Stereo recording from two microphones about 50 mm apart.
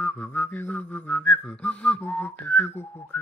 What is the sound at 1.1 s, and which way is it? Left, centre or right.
Whistling, left.